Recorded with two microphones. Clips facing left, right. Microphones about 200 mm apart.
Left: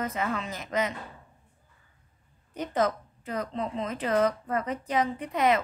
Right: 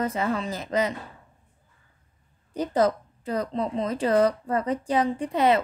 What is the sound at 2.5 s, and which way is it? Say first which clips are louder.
A woman's voice: right 5 dB; 35° right (ahead or behind).